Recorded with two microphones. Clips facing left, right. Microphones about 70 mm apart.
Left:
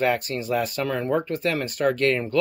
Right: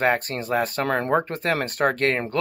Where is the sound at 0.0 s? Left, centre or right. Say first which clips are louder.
Right 1 dB; right.